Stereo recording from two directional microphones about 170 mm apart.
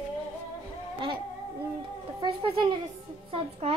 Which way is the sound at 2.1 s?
25° right (ahead or behind).